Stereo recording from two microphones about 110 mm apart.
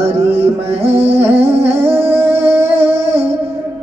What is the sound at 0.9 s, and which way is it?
Music, 20° right (ahead or behind).